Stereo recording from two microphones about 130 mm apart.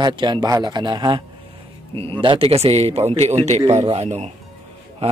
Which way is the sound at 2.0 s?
45° right (ahead or behind).